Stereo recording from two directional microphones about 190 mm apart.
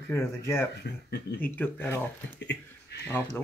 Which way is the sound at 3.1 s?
15° left (ahead or behind).